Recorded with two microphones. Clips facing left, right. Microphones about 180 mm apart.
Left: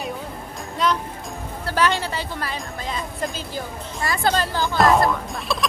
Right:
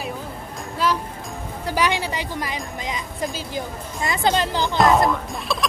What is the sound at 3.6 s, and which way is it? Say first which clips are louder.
Speech: right 1 dB; 20° right (ahead or behind).